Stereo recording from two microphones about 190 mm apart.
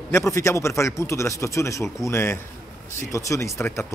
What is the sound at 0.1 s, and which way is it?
A man's voice, 15° left (ahead or behind).